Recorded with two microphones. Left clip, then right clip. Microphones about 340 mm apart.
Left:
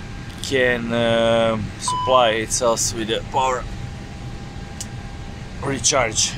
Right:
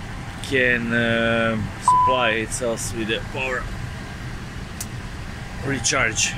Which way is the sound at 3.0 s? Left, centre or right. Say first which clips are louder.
Left 4 dB; left.